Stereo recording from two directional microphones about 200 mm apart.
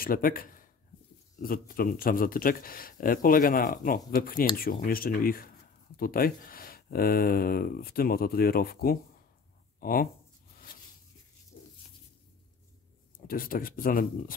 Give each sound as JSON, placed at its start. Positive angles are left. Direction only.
{"t": 0.0, "sound": "a man's voice", "side_deg": 45}
{"t": 13.3, "sound": "speech", "side_deg": 45}